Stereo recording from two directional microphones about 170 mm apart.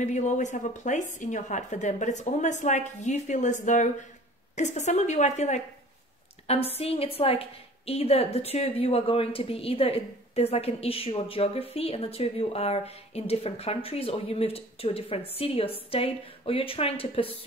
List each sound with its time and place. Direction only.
0.0 s a woman's voice: 45° left (ahead or behind)